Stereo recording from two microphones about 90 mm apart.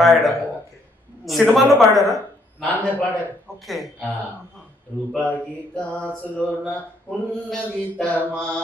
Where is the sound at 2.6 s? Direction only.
15° left (ahead or behind).